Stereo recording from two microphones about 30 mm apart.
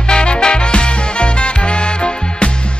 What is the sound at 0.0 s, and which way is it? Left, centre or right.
Music, left.